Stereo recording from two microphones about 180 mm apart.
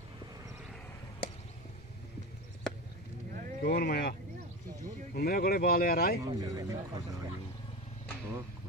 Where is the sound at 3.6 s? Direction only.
70° left (ahead or behind).